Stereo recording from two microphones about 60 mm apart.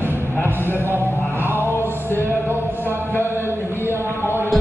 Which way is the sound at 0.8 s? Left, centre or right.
Right.